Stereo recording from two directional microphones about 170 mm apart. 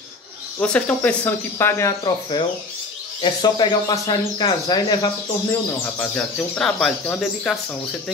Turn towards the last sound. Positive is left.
turn(degrees=5)  # may be behind; listen again after turning